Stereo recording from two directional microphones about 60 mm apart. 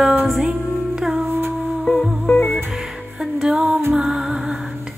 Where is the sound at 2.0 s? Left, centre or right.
Centre.